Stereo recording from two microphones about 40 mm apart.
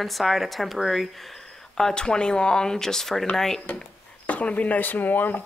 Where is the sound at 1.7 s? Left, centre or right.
Centre.